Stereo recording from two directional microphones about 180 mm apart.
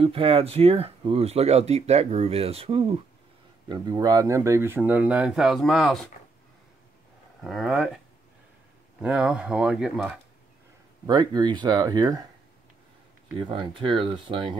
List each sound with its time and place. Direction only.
0.0 s speech: 30° right (ahead or behind); by 5.9 s centre (ahead or behind)
7.4 s speech: centre (ahead or behind)
9.0 s speech: 5° right (ahead or behind)
11.1 s speech: 25° right (ahead or behind)
13.4 s speech: 30° right (ahead or behind)